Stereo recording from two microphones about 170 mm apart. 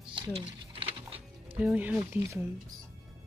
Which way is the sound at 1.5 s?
5° right (ahead or behind).